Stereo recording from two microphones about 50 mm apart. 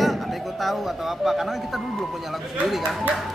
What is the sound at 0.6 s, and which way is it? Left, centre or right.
Speech, centre.